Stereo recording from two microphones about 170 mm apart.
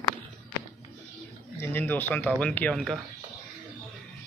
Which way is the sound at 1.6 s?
10° left (ahead or behind).